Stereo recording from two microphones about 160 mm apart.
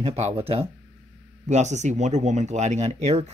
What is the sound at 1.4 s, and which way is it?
Speech, 45° right (ahead or behind).